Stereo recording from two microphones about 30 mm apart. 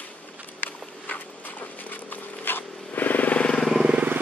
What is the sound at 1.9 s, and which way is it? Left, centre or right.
Vehicle, left.